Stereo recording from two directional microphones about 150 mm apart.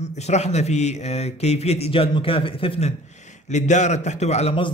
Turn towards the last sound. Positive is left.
turn(degrees=45)  # may be behind; listen again after turning